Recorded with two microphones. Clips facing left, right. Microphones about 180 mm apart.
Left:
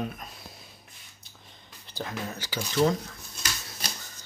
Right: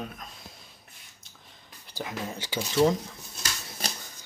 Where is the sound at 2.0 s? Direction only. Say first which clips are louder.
Even; 15° right (ahead or behind).